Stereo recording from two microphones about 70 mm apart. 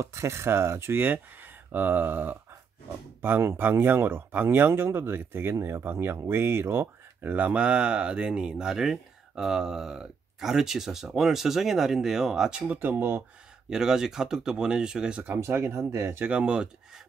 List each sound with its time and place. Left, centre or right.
0.0 s speech: right; by 12.6 s centre
12.6 s speech: right
13.7 s speech: centre
15.4 s speech: right
16.3 s speech: centre